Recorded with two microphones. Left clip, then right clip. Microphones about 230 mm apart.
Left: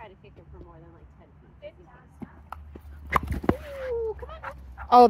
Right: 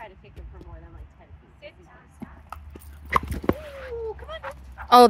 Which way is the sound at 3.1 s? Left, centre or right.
Left.